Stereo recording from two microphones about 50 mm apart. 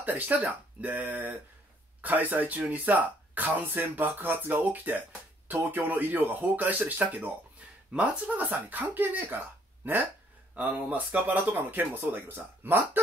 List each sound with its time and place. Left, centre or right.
0.0 s speech: right
7.9 s speech: right
8.3 s speech: right
10.5 s speech: right